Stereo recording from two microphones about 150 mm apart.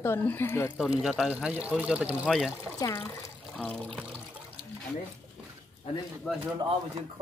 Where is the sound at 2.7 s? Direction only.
25° left (ahead or behind).